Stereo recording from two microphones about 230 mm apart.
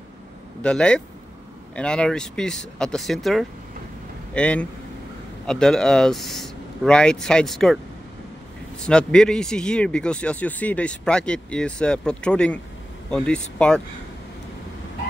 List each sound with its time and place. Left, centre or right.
0.6 s a man's voice: centre